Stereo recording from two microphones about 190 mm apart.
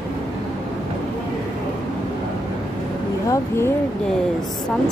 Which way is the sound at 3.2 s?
15° left (ahead or behind).